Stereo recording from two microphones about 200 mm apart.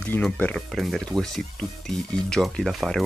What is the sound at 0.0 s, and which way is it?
Speech, 5° left (ahead or behind).